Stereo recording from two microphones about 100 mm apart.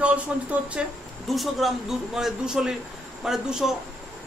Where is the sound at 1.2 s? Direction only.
Centre (ahead or behind).